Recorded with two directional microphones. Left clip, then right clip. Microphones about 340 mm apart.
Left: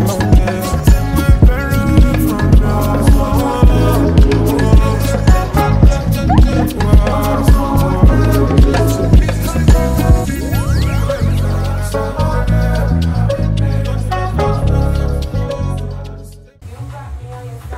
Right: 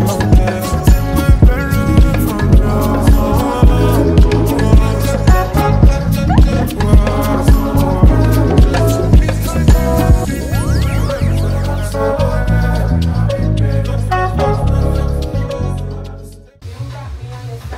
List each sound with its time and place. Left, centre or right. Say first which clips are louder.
0.0 s music: even; centre